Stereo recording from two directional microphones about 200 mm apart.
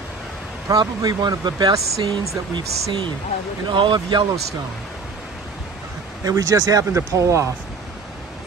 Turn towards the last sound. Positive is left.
turn(degrees=-15)  # may be behind; listen again after turning